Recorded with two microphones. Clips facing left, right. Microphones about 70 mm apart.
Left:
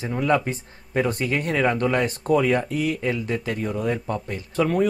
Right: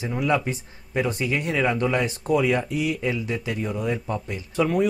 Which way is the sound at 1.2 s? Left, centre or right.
Left.